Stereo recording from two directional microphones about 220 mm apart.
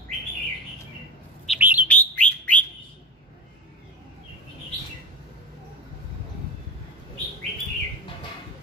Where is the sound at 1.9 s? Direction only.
5° left (ahead or behind).